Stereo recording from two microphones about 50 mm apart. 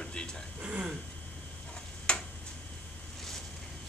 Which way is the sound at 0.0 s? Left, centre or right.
Centre.